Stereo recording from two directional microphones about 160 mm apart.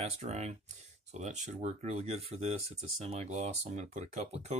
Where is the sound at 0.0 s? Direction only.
45° right (ahead or behind).